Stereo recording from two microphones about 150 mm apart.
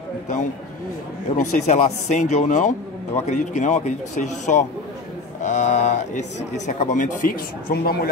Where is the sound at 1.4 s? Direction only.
50° left (ahead or behind).